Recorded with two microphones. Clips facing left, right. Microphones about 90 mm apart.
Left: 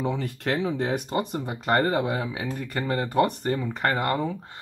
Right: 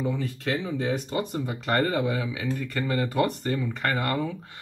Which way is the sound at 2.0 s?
40° left (ahead or behind).